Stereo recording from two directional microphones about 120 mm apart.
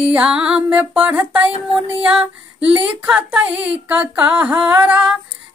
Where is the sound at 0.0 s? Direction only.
10° right (ahead or behind).